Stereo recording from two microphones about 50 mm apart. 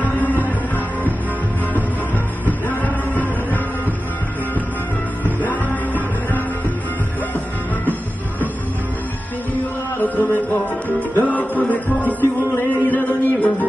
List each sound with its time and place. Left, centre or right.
0.0 s music: left
2.4 s music: left
5.2 s music: left
9.9 s music: left
11.0 s music: left